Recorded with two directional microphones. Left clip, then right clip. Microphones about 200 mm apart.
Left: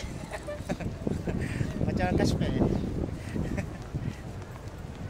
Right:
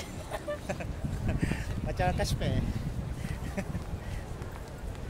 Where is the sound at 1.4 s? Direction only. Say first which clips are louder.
Left 2 dB; 10° right (ahead or behind).